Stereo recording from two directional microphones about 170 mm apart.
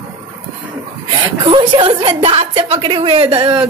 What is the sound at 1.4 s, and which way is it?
A woman's voice, 30° right (ahead or behind).